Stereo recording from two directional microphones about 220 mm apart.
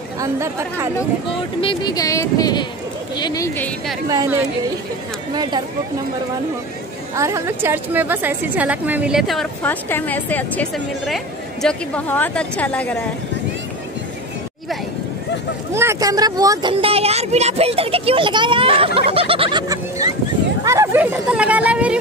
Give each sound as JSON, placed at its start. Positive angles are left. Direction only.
{"t": 0.2, "sound": "a woman's voice", "side_deg": -10}
{"t": 1.3, "sound": "speech", "side_deg": 25}
{"t": 4.1, "sound": "a woman's voice", "side_deg": -15}
{"t": 7.2, "sound": "a woman's voice", "side_deg": -15}
{"t": 15.7, "sound": "a woman's voice", "side_deg": -10}